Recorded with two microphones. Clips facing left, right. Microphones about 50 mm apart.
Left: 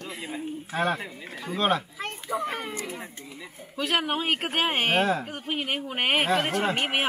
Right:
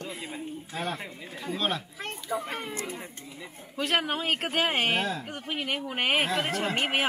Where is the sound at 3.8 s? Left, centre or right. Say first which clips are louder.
Left 1 dB; centre.